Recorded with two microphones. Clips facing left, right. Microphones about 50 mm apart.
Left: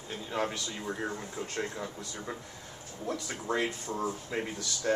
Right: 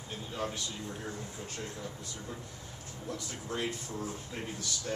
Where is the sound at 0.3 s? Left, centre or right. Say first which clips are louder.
Left 5 dB; left.